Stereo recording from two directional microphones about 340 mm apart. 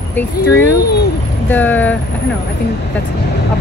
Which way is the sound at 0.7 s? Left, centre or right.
Left.